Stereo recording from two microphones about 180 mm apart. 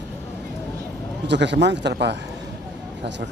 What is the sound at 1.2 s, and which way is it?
Speech, 75° right (ahead or behind).